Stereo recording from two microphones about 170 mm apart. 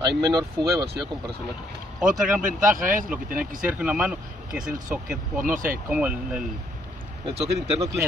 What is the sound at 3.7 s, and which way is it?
Speech, 5° right (ahead or behind).